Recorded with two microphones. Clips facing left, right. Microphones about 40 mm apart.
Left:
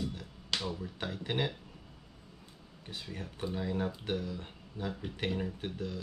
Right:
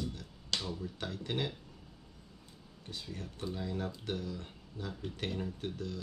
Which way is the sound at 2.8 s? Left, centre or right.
Left.